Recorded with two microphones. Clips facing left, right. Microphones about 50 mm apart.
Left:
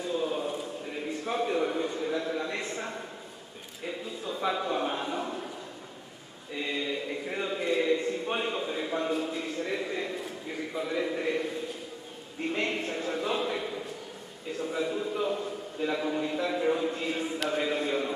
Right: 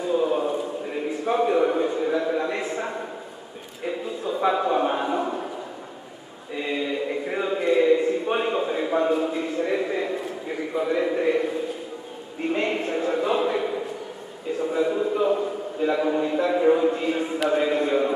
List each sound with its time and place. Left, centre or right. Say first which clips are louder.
0.0 s a sound: right 8 dB; centre
2.6 s a man's voice: right 7 dB; centre
6.5 s speech: right 5 dB; centre